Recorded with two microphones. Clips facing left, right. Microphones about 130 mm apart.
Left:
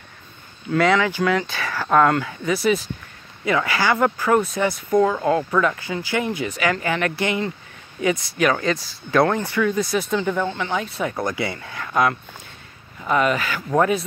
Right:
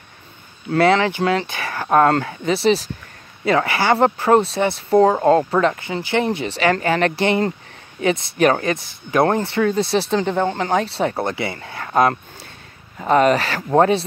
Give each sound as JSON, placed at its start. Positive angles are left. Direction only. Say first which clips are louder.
{"t": 0.7, "sound": "speech", "louder": "right 3 dB", "side_deg": -30}
{"t": 1.9, "sound": "speech", "louder": "right 2 dB", "side_deg": -35}
{"t": 8.4, "sound": "speech", "louder": "right 5 dB", "side_deg": -45}
{"t": 8.6, "sound": "speech", "louder": "right 1 dB", "side_deg": -20}
{"t": 11.0, "sound": "speech", "louder": "right 3 dB", "side_deg": -30}